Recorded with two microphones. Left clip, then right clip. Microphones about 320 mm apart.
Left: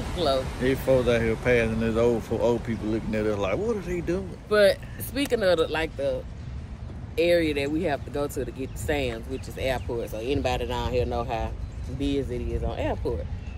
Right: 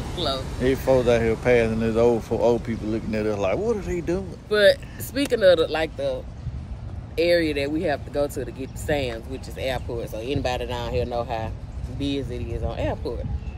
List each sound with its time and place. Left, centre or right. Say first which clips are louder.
0.2 s speech: left 2 dB; left
0.6 s speech: right 7 dB; centre
4.5 s speech: right 3 dB; centre
7.2 s speech: right 2 dB; centre